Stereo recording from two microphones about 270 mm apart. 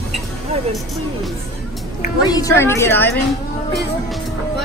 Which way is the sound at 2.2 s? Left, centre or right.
Centre.